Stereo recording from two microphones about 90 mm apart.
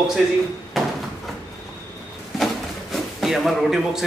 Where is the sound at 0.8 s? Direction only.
Centre (ahead or behind).